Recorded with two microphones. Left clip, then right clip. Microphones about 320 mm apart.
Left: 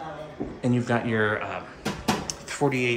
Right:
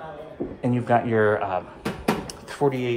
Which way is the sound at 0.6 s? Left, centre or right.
Centre.